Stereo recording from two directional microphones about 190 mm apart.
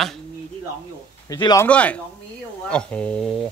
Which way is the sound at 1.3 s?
20° left (ahead or behind).